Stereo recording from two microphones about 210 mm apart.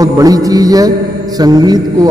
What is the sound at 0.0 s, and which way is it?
A man's voice, 15° right (ahead or behind).